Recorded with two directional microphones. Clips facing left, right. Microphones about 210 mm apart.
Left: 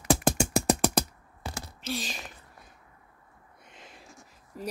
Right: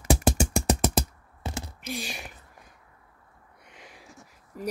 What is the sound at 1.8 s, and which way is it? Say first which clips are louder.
Speech: left 4 dB; 15° right (ahead or behind).